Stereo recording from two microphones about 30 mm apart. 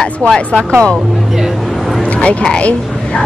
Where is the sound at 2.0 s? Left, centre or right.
Left.